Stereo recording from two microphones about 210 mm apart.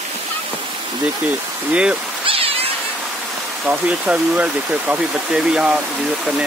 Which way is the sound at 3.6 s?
5° right (ahead or behind).